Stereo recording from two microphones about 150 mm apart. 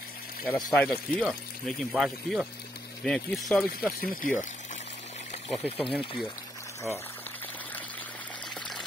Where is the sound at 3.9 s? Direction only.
70° left (ahead or behind).